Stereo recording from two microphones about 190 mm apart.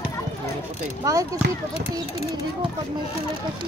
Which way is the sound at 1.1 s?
15° right (ahead or behind).